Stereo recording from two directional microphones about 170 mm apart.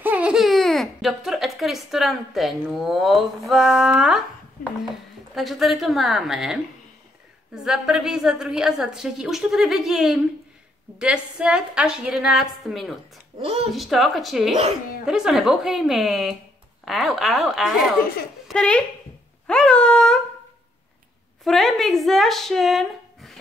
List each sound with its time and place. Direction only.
0.0 s speech: 10° right (ahead or behind)
4.6 s a sound: 55° left (ahead or behind)
5.3 s a woman's voice: centre (ahead or behind)
13.4 s speech: 35° right (ahead or behind)
13.7 s a woman's voice: centre (ahead or behind)
21.5 s a woman's voice: centre (ahead or behind)